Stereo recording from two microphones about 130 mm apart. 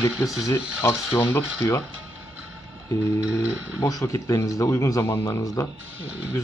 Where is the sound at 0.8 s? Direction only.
20° left (ahead or behind).